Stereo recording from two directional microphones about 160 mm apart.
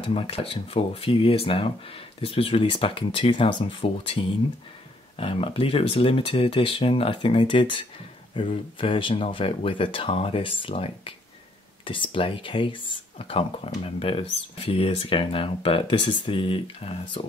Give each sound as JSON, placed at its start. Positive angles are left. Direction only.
{"t": 0.0, "sound": "speech", "side_deg": 35}